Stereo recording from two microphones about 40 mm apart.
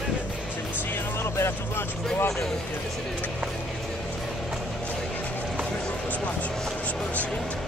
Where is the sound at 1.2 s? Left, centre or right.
Left.